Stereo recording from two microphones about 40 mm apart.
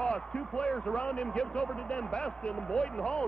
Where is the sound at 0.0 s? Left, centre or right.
Left.